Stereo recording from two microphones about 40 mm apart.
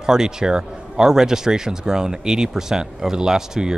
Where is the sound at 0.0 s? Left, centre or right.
Centre.